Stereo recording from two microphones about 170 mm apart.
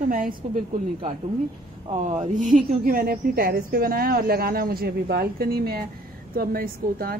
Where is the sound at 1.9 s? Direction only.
45° right (ahead or behind).